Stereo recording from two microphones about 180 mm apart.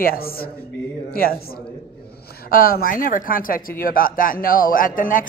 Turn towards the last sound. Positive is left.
turn(degrees=50)  # may be behind; listen again after turning